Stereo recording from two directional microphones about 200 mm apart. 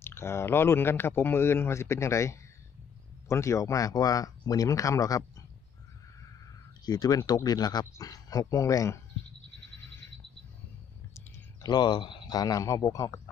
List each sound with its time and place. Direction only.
0.0 s speech: 10° left (ahead or behind)
6.9 s speech: 20° left (ahead or behind)
11.1 s speech: 20° left (ahead or behind)